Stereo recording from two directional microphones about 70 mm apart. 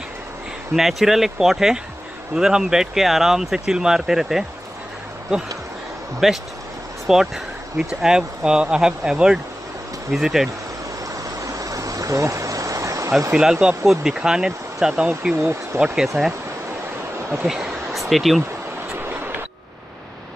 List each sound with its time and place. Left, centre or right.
0.7 s speech: centre
6.2 s speech: centre
11.2 s stream: right
13.3 s speech: centre
15.3 s speech: right
15.8 s speech: centre
17.5 s a sound: centre
18.9 s a sound: right